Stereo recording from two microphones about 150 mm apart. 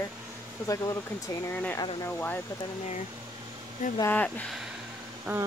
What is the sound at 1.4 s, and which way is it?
Speech, 15° left (ahead or behind).